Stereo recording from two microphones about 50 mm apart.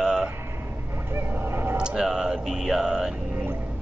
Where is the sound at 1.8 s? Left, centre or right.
Centre.